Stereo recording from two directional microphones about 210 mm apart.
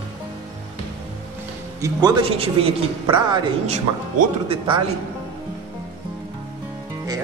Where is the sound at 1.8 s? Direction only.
20° right (ahead or behind).